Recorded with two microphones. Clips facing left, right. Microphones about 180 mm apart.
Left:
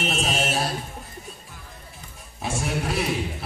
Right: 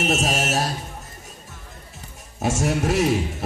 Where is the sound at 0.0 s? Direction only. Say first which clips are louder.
Right 3 dB; 45° right (ahead or behind).